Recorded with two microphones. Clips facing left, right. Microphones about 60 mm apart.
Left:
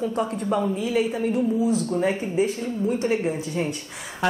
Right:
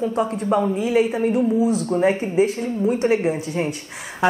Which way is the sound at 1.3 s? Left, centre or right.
Centre.